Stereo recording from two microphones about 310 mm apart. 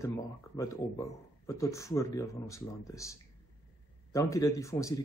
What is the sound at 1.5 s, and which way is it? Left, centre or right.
A man's voice, centre.